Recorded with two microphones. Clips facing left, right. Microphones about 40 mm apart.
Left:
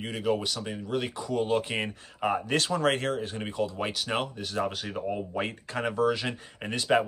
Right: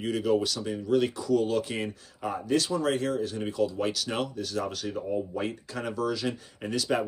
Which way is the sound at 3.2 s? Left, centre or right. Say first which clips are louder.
Right 3 dB; left.